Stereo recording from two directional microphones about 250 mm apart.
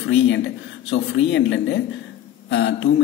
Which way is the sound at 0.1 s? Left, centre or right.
Left.